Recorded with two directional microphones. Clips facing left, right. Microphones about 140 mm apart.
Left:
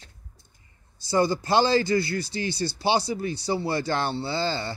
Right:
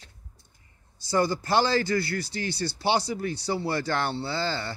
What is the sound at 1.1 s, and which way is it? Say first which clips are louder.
Speech: left 2 dB; 15° left (ahead or behind).